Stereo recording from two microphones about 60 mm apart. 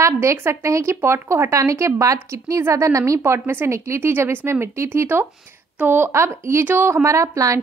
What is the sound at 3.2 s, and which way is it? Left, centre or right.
Speech, right.